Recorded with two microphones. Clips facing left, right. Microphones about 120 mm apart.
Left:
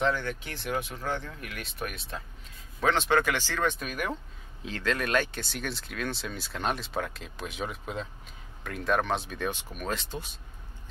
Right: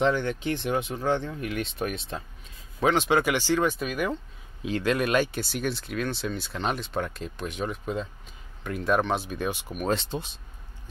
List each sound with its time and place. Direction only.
0.0 s speech: 25° right (ahead or behind)
2.8 s speech: 15° right (ahead or behind)
9.8 s speech: 30° right (ahead or behind)